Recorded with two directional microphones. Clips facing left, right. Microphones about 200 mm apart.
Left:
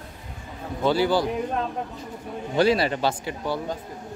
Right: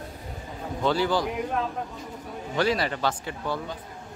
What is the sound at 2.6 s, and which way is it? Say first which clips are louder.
Speech: left 4 dB; 30° left (ahead or behind).